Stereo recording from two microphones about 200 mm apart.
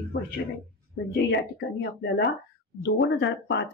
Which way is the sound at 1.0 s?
55° left (ahead or behind).